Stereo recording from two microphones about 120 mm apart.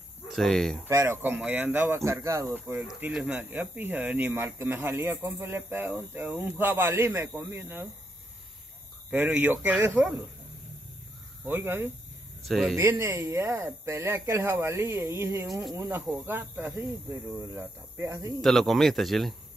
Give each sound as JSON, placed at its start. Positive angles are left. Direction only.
{"t": 0.3, "sound": "speech", "side_deg": 0}
{"t": 0.8, "sound": "speech", "side_deg": -25}
{"t": 1.3, "sound": "speech", "side_deg": -10}
{"t": 3.1, "sound": "speech", "side_deg": -5}
{"t": 9.1, "sound": "speech", "side_deg": -15}
{"t": 11.4, "sound": "speech", "side_deg": -20}
{"t": 12.4, "sound": "speech", "side_deg": 0}
{"t": 13.0, "sound": "speech", "side_deg": -20}
{"t": 18.4, "sound": "speech", "side_deg": 0}